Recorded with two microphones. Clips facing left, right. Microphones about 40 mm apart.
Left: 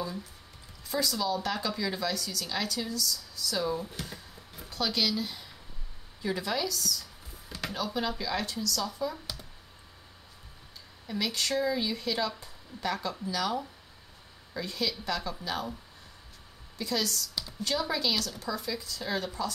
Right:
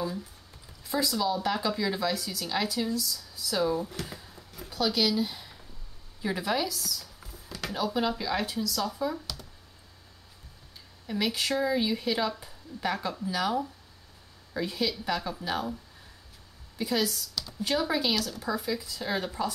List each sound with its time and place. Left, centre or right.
0.8 s speech: centre
11.1 s speech: centre
16.7 s speech: centre